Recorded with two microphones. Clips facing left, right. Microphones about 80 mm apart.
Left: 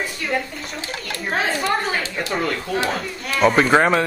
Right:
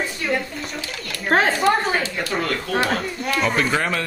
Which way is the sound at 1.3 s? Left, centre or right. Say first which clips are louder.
Right 5 dB; right.